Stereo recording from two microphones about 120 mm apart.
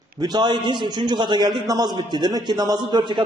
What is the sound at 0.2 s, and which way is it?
A man's voice, 35° right (ahead or behind).